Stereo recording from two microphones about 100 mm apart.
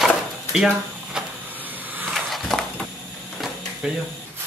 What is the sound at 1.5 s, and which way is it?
Power windows, 15° right (ahead or behind).